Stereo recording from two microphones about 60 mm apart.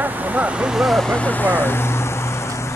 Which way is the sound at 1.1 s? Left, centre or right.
Left.